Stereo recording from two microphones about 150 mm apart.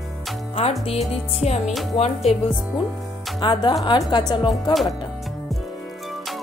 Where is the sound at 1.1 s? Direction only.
45° left (ahead or behind).